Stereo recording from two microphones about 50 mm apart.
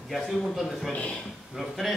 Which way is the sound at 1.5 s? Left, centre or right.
Centre.